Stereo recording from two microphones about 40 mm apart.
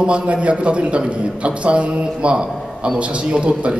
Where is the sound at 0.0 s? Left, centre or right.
Right.